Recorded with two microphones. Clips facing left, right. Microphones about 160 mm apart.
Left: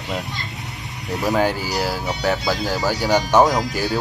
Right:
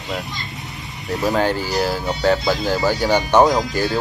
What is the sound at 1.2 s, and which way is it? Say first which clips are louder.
Speech: right 1 dB; 10° left (ahead or behind).